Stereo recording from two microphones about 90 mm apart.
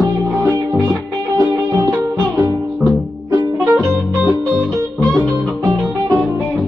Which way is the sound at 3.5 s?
Centre (ahead or behind).